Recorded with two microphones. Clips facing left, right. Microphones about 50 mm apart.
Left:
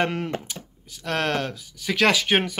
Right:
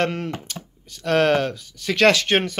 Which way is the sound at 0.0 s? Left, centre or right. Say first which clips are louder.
Right 1 dB; centre.